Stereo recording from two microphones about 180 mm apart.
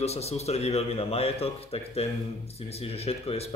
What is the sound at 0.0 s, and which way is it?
Speech, 35° left (ahead or behind).